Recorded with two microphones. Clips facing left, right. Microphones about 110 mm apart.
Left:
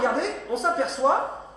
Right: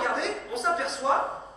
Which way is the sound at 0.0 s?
35° left (ahead or behind).